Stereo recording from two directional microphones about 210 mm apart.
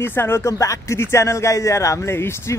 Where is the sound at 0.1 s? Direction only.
10° left (ahead or behind).